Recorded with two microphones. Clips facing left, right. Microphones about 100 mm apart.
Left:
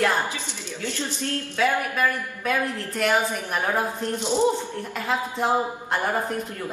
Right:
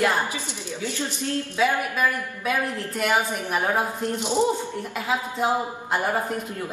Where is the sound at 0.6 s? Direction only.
15° right (ahead or behind).